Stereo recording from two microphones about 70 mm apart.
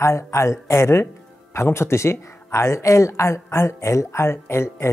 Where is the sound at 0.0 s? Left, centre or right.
Left.